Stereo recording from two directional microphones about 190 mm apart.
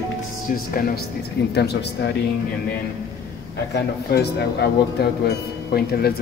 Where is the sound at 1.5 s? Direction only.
60° left (ahead or behind).